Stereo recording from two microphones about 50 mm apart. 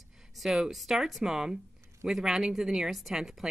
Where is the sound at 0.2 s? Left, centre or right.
Centre.